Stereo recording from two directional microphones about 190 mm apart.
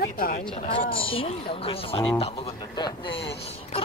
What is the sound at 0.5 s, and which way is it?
Speech, 30° left (ahead or behind).